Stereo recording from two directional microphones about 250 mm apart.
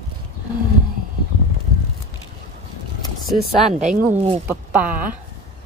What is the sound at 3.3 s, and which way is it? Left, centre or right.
Speech, centre.